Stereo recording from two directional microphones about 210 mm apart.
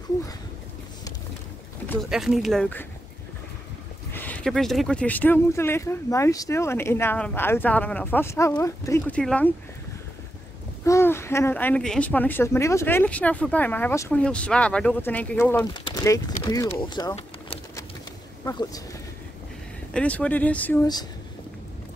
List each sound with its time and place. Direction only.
2.0 s speech: centre (ahead or behind)
4.1 s speech: 10° left (ahead or behind)
10.9 s speech: 10° left (ahead or behind)
15.7 s speech: 20° left (ahead or behind)
19.9 s speech: 5° left (ahead or behind)